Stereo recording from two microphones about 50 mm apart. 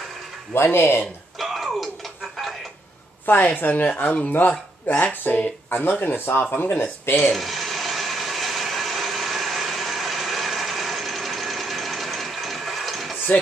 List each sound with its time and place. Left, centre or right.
0.6 s speech: left
1.4 s music: centre
3.5 s speech: left
5.2 s speech: left
7.2 s a sound: centre